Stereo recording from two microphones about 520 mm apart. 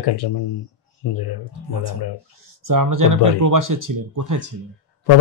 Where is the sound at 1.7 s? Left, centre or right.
Right.